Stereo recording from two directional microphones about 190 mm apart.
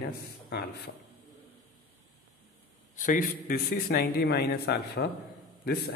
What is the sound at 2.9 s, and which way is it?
A man's voice, 45° left (ahead or behind).